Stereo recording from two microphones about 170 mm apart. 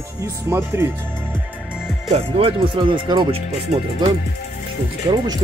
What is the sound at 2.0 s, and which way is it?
Speech, 35° right (ahead or behind).